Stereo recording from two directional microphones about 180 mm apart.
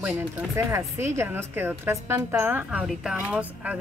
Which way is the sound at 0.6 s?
15° right (ahead or behind).